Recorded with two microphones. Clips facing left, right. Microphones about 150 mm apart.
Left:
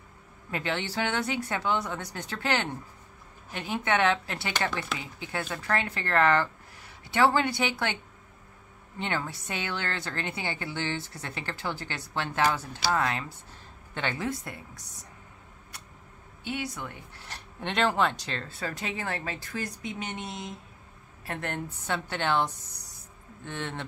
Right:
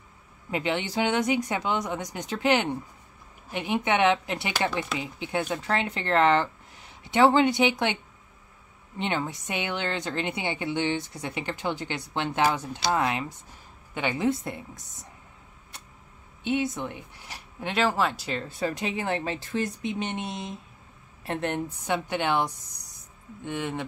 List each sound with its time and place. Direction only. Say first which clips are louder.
0.5 s a woman's voice: right 4 dB; 15° right (ahead or behind)
16.4 s a woman's voice: right 7 dB; 25° right (ahead or behind)